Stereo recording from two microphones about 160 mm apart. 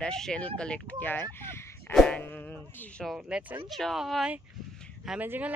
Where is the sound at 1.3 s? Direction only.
15° left (ahead or behind).